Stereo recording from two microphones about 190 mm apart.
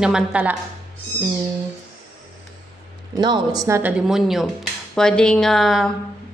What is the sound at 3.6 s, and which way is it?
A woman's voice, 10° right (ahead or behind).